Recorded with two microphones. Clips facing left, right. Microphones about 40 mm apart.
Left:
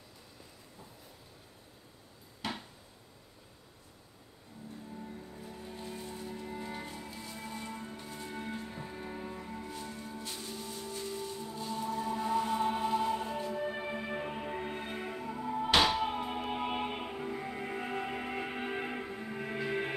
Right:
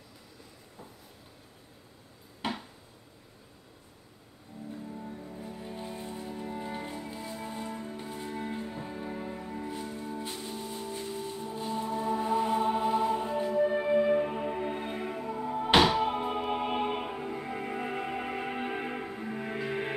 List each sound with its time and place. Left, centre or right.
2.4 s a sound: right
4.9 s music: right
7.3 s music: centre
13.6 s music: centre